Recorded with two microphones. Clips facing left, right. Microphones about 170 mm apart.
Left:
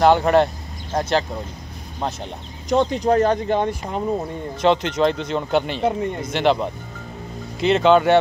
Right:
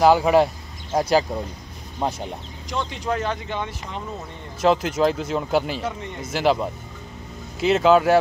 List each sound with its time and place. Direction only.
0.0 s speech: 5° right (ahead or behind)
2.7 s speech: 40° left (ahead or behind)
4.6 s speech: 5° right (ahead or behind)